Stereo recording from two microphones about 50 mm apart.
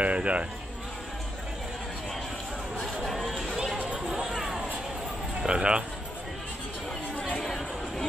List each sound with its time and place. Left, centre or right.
0.0 s a sound: right
3.0 s chatter: centre
3.7 s run: right
4.1 s a sound: centre
5.5 s speech: centre
7.2 s chatter: centre
7.4 s chatter: centre